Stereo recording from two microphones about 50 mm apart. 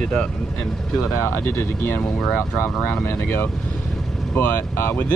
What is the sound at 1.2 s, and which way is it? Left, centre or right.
Speech, left.